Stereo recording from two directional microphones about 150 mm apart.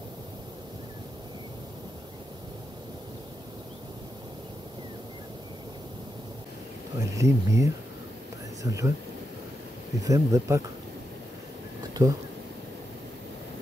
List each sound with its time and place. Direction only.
7.0 s speech: 20° right (ahead or behind)
10.0 s speech: 20° right (ahead or behind)
11.9 s a sound: 25° right (ahead or behind)